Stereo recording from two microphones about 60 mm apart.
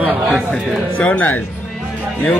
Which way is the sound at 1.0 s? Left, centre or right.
Left.